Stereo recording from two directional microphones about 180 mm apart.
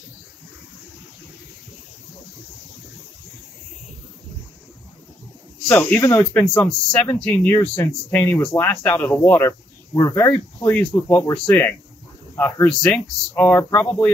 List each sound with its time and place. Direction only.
5.7 s speech: 10° left (ahead or behind)